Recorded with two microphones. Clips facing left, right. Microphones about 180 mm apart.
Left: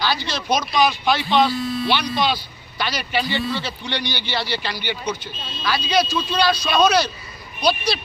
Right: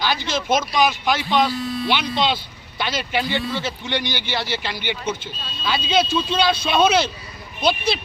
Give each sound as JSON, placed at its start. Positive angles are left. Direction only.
{"t": 0.1, "sound": "speech", "side_deg": -20}